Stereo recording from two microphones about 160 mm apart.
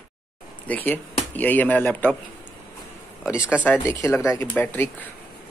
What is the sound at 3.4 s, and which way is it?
Speech, 10° right (ahead or behind).